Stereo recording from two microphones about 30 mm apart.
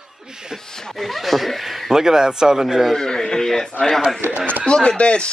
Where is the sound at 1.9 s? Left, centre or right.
Centre.